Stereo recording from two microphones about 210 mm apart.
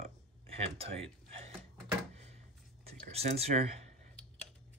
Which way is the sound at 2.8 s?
30° right (ahead or behind).